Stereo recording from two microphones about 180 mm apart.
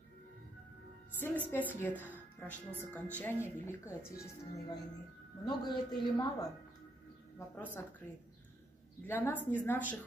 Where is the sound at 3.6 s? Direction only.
15° left (ahead or behind).